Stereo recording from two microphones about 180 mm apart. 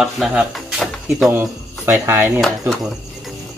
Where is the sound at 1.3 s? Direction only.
15° right (ahead or behind).